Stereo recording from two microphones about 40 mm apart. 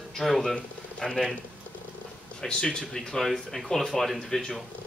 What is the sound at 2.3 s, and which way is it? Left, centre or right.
Speech, centre.